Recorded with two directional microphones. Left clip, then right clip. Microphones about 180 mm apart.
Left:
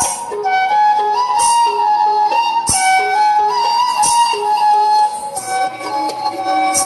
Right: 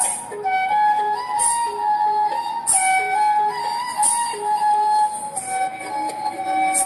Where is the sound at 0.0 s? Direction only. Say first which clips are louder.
Left 7 dB; 40° left (ahead or behind).